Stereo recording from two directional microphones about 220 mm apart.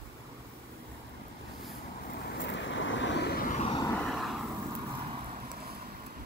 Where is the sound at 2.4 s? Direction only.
55° left (ahead or behind); by 3.6 s 40° left (ahead or behind).